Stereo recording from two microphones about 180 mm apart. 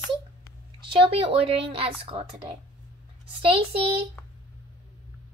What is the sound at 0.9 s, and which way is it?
A woman's voice, 30° right (ahead or behind).